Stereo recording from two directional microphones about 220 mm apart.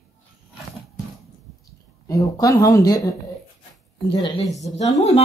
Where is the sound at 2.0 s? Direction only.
15° left (ahead or behind).